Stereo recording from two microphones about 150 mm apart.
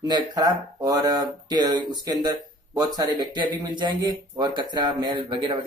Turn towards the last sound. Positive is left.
turn(degrees=-30)  # may be behind; listen again after turning